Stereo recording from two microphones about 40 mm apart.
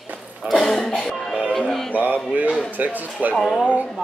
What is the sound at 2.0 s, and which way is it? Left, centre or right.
Speech, right.